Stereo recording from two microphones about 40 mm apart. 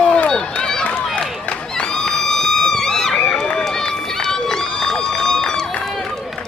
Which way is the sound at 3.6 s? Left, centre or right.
Centre.